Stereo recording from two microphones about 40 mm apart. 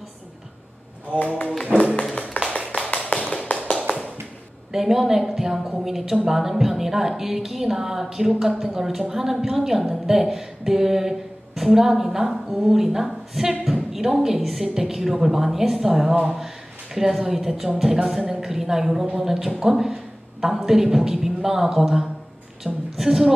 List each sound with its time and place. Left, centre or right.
1.2 s speech: left
2.6 s a sound: centre
3.1 s tap: left
4.7 s a woman's voice: centre